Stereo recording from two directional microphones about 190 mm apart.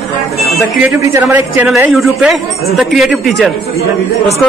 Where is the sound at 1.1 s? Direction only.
15° right (ahead or behind).